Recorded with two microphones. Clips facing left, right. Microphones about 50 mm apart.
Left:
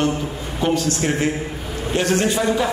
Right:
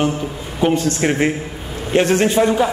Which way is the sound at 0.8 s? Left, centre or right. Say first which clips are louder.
Right 3 dB; right.